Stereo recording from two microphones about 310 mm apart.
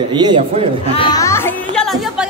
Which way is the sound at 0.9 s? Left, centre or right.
Centre.